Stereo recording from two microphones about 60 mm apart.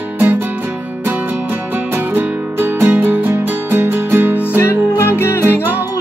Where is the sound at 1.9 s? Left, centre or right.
Right.